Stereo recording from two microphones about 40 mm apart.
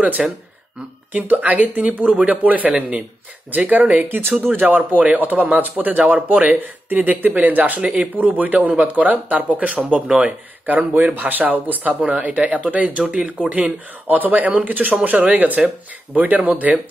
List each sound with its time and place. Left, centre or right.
0.2 s speech: centre
1.1 s speech: right
7.8 s speech: right
8.2 s speech: right
14.0 s speech: right